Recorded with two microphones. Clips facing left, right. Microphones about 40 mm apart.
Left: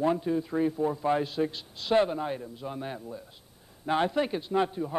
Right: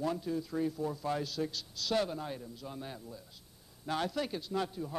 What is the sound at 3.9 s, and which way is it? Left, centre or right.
A man's voice, left.